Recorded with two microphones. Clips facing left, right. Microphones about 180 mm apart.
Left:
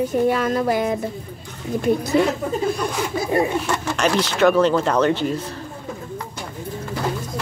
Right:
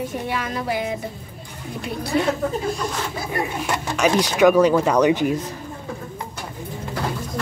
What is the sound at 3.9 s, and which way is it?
Speech, 10° right (ahead or behind).